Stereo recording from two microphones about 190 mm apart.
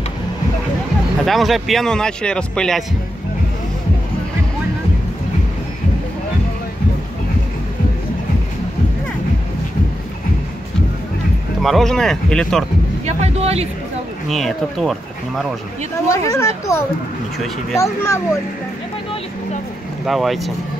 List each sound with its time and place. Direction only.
1.2 s speech: centre (ahead or behind)
11.6 s speech: centre (ahead or behind)
13.0 s a sound: 35° right (ahead or behind)
14.3 s speech: centre (ahead or behind)
16.1 s speech: 15° left (ahead or behind)
20.1 s speech: centre (ahead or behind)